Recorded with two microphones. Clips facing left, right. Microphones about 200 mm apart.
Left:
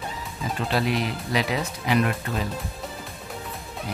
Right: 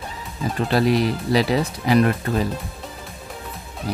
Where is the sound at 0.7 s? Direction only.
40° right (ahead or behind).